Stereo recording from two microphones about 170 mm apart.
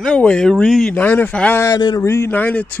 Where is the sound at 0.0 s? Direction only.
5° left (ahead or behind).